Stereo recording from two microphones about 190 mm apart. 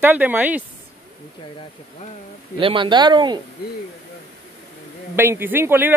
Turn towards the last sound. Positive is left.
turn(degrees=-10)  # may be behind; listen again after turning